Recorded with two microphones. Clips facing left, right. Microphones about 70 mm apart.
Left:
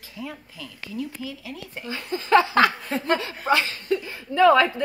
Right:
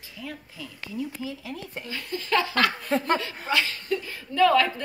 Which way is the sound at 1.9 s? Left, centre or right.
Left.